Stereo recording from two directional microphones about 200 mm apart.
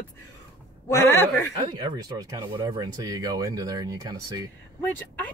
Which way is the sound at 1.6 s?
20° right (ahead or behind).